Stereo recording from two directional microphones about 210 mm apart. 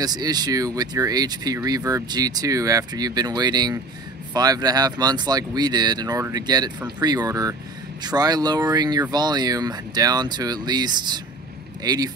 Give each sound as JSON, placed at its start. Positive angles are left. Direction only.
{"t": 0.0, "sound": "speech", "side_deg": -20}